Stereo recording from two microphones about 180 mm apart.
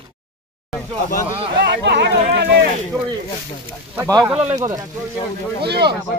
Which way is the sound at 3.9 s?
15° right (ahead or behind).